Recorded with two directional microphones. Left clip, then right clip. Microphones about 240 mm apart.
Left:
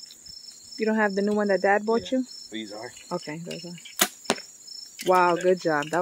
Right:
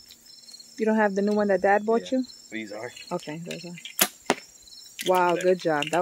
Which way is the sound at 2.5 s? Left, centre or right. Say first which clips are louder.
Right 1 dB; right.